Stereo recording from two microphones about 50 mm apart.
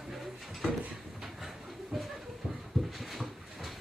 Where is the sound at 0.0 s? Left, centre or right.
Centre.